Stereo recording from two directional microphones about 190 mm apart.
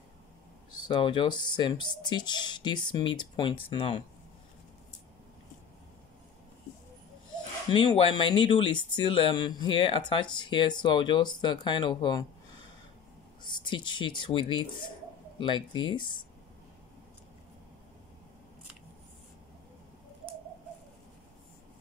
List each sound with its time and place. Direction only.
0.8 s speech: 25° left (ahead or behind)
7.7 s speech: 25° left (ahead or behind)
13.4 s speech: 25° left (ahead or behind)